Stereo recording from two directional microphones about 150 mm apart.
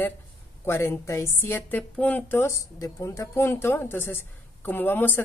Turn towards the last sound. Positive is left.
turn(degrees=15)  # may be behind; listen again after turning